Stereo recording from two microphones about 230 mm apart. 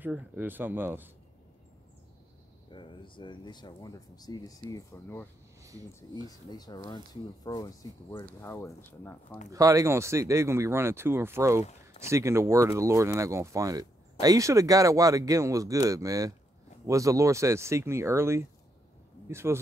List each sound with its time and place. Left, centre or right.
0.0 s speech: centre
2.7 s speech: left
5.6 s a sound: centre
6.5 s speech: centre
9.5 s speech: centre